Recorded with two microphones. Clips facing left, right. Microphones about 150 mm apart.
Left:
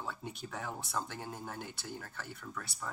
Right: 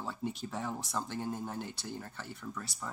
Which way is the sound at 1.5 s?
30° right (ahead or behind).